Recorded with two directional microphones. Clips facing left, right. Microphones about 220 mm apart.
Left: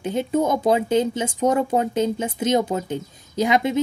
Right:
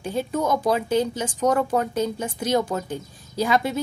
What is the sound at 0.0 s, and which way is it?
A woman's voice, 20° left (ahead or behind).